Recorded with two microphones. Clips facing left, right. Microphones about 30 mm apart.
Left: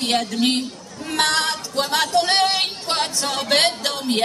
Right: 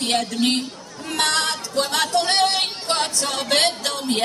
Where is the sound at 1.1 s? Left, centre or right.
Centre.